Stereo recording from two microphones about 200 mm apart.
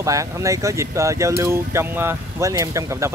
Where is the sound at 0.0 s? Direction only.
15° right (ahead or behind).